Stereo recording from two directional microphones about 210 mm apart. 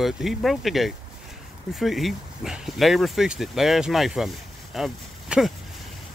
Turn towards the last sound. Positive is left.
turn(degrees=0)  # may be behind; listen again after turning